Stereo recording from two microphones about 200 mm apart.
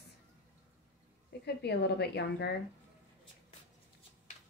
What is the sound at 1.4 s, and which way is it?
A woman's voice, 55° left (ahead or behind).